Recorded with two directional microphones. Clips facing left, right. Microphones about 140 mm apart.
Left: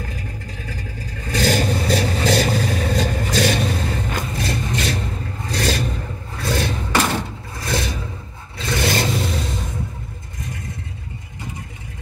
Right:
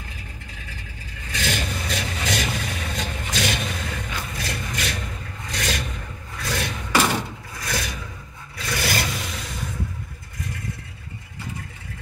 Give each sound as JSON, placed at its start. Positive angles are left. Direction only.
{"t": 1.3, "sound": "vehicle", "side_deg": 40}
{"t": 4.3, "sound": "a sound", "side_deg": 30}
{"t": 5.5, "sound": "vehicle", "side_deg": 35}